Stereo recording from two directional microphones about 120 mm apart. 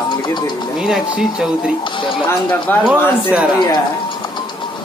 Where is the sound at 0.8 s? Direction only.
5° right (ahead or behind).